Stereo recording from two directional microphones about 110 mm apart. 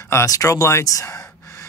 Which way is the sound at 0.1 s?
30° left (ahead or behind).